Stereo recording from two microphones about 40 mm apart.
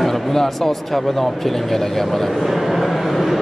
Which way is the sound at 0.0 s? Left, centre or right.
Centre.